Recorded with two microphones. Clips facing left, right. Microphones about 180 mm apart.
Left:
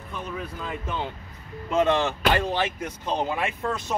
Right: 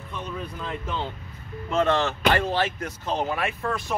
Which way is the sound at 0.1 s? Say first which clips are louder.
Even; 5° left (ahead or behind).